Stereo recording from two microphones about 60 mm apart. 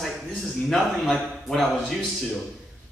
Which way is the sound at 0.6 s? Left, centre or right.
Centre.